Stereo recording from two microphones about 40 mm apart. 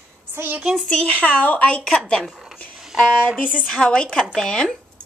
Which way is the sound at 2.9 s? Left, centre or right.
Centre.